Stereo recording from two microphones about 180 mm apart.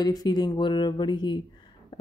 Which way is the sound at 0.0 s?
20° left (ahead or behind).